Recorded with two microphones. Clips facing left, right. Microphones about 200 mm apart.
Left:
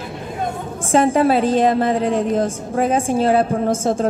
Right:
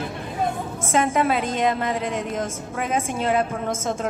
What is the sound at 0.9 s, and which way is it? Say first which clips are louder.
A woman's voice: left 6 dB; 35° left (ahead or behind).